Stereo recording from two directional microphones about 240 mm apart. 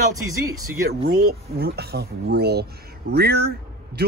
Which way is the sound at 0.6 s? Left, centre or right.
Right.